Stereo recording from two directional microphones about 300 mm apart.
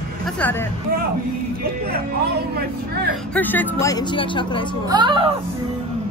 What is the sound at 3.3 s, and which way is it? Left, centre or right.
Speech, centre.